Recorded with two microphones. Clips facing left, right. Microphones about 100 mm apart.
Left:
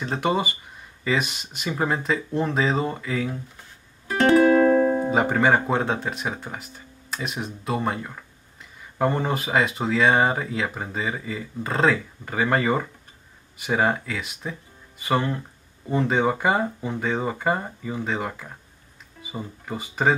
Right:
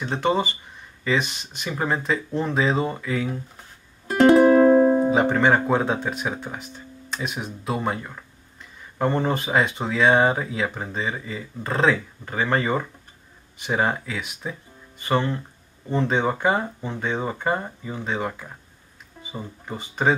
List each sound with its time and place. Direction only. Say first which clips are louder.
0.2 s speech: right 2 dB; 10° left (ahead or behind)
4.5 s music: right 3 dB; 20° right (ahead or behind)
5.1 s speech: right 1 dB; 5° left (ahead or behind)
19.3 s speech: left 1 dB; 5° left (ahead or behind)